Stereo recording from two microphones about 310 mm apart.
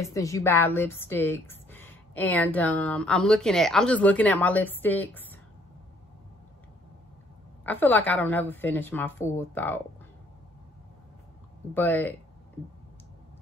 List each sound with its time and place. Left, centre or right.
0.0 s speech: centre
7.6 s a woman's voice: centre
11.7 s speech: centre